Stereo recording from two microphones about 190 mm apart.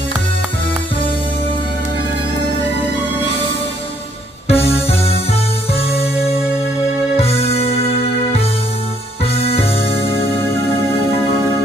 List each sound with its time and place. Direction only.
4.5 s music: 30° left (ahead or behind)
7.2 s music: 35° left (ahead or behind)
9.2 s music: 30° left (ahead or behind)
9.9 s music: 10° left (ahead or behind)